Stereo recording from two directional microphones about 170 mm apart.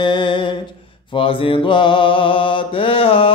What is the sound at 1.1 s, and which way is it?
Mantra, 30° left (ahead or behind).